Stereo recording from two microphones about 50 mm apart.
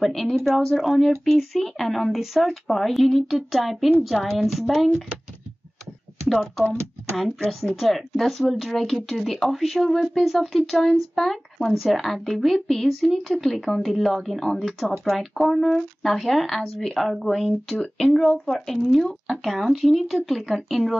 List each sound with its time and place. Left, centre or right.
0.0 s speech: centre
6.2 s speech: centre